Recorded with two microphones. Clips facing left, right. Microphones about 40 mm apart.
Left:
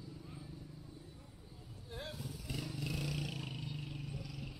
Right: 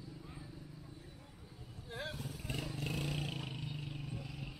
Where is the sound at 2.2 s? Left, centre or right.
Right.